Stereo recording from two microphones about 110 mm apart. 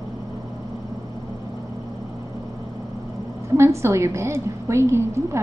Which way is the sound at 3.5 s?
25° right (ahead or behind).